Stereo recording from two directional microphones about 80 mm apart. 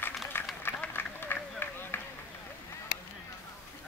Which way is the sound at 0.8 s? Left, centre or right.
Left.